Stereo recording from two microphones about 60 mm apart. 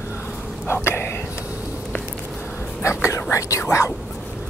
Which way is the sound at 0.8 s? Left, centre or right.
Left.